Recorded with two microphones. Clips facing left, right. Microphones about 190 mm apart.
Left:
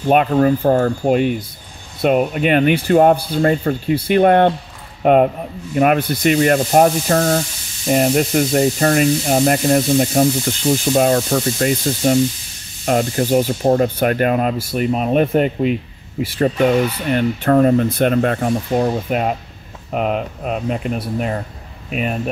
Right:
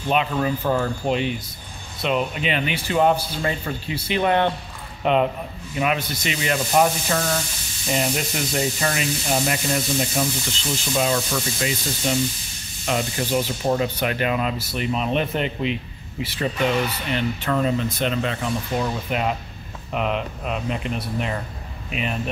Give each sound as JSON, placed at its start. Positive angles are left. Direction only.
{"t": 0.1, "sound": "speech", "side_deg": 50}